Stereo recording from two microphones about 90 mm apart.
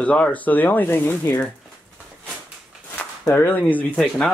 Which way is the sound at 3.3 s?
20° left (ahead or behind).